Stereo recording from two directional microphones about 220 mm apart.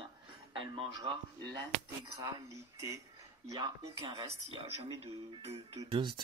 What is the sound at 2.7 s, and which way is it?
Speech, 15° right (ahead or behind).